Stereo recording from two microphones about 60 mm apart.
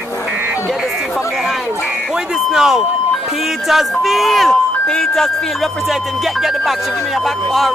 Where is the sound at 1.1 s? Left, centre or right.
Centre.